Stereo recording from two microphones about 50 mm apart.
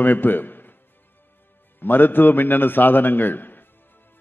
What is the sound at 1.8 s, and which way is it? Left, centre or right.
A man's voice, left.